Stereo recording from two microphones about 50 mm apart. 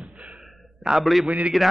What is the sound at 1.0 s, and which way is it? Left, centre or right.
Speech, centre.